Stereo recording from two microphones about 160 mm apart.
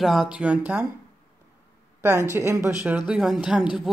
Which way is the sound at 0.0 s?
Centre (ahead or behind).